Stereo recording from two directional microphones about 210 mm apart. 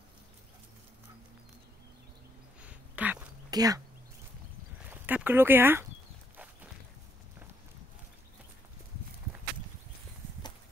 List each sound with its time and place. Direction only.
2.6 s a sound: 5° right (ahead or behind)
3.4 s speech: 15° right (ahead or behind)
4.8 s speech: 10° right (ahead or behind)